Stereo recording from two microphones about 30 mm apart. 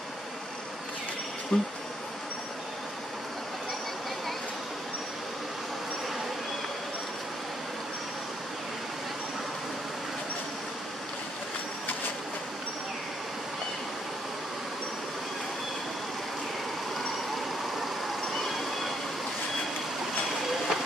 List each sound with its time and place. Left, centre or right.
1.5 s speech: left
17.7 s vehicle: centre